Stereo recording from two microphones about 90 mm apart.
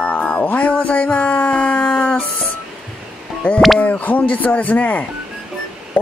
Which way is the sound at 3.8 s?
15° left (ahead or behind).